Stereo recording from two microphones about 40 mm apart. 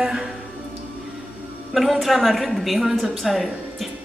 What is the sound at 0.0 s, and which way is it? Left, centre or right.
Music, centre.